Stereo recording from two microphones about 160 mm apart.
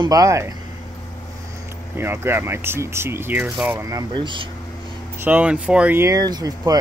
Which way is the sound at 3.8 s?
25° right (ahead or behind).